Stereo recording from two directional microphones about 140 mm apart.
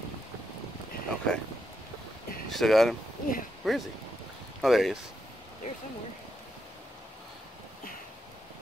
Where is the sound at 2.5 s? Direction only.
Centre (ahead or behind).